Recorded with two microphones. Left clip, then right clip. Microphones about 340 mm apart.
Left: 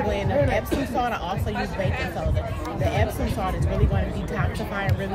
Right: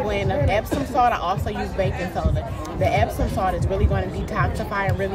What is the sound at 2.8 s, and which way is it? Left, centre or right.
Speech, right.